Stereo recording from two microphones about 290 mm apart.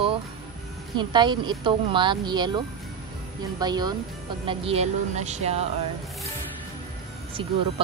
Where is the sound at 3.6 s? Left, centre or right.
Centre.